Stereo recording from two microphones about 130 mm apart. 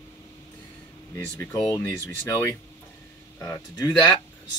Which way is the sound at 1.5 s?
20° left (ahead or behind).